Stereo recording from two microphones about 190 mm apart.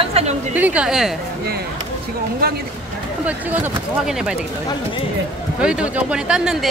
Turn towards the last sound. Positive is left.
turn(degrees=-5)  # may be behind; listen again after turning